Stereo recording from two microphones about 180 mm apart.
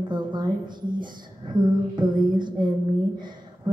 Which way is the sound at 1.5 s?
25° right (ahead or behind).